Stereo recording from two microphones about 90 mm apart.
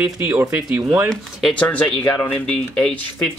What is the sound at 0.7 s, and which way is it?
Speech, 20° right (ahead or behind).